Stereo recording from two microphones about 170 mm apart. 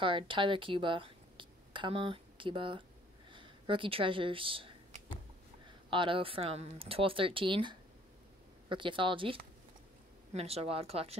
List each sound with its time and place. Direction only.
0.0 s speech: 30° right (ahead or behind)
5.9 s speech: 30° right (ahead or behind)